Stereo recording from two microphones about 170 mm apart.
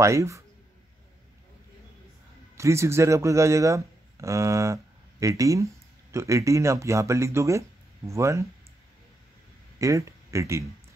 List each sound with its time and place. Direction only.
0.0 s speech: 15° right (ahead or behind)
2.5 s speech: 15° right (ahead or behind)
9.8 s speech: 20° right (ahead or behind)